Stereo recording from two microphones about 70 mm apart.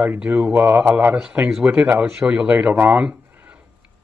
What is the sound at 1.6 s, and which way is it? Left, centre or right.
Speech, right.